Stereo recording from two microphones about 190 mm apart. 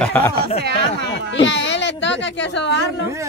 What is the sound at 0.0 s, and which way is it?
Speech, 10° left (ahead or behind).